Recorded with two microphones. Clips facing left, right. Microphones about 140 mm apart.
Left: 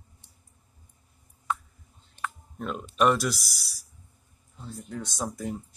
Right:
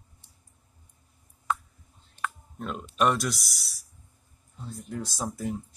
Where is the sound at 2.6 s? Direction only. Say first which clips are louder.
Left 2 dB; centre (ahead or behind).